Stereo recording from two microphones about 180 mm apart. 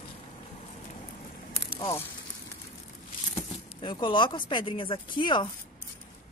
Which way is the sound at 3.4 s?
25° left (ahead or behind).